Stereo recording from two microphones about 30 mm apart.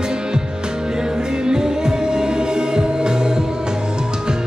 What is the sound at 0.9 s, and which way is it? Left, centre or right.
Music, right.